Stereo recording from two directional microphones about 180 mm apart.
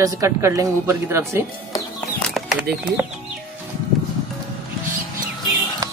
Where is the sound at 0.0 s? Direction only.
20° right (ahead or behind).